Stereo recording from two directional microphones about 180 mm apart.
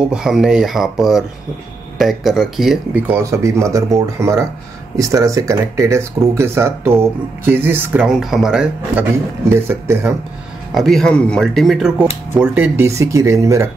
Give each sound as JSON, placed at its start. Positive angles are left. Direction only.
{"t": 0.1, "sound": "speech", "side_deg": -5}
{"t": 10.7, "sound": "speech", "side_deg": 0}